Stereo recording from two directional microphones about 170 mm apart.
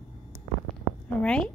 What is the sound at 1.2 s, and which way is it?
Speech, 5° left (ahead or behind).